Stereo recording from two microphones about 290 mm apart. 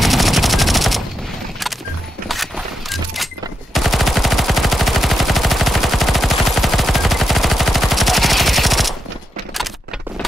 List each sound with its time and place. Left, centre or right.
0.0 s gunshot: centre
2.2 s a sound: centre
3.7 s machine gun: centre